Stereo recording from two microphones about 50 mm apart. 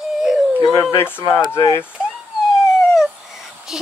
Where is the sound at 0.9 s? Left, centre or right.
Left.